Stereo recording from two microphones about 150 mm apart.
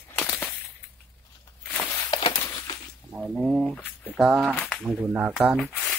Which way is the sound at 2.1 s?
35° left (ahead or behind).